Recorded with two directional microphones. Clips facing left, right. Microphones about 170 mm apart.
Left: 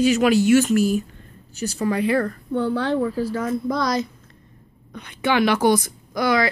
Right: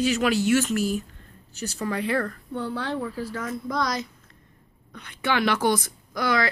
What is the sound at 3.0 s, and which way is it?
Speech, 35° left (ahead or behind).